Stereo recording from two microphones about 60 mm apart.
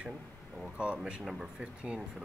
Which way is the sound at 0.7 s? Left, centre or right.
Centre.